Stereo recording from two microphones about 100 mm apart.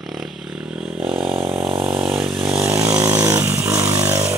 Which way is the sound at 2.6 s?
30° right (ahead or behind).